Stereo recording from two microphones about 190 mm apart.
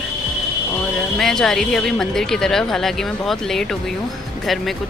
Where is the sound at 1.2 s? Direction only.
Centre (ahead or behind).